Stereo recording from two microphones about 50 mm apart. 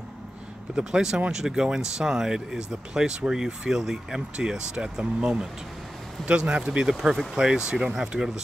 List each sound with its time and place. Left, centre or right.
0.7 s speech: centre